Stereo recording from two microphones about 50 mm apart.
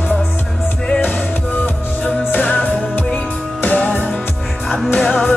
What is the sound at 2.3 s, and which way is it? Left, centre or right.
Music, left.